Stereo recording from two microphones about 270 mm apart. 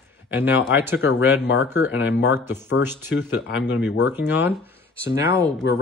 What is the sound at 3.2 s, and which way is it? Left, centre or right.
Speech, left.